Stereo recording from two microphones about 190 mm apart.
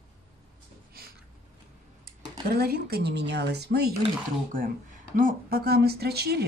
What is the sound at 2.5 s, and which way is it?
Speech, 55° right (ahead or behind).